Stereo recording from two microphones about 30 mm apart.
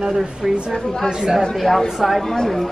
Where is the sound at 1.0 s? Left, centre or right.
Right.